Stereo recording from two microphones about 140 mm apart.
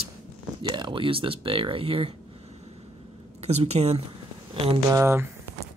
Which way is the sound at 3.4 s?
50° right (ahead or behind).